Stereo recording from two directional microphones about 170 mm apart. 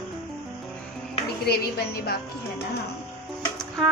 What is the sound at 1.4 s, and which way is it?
Speech, 65° left (ahead or behind).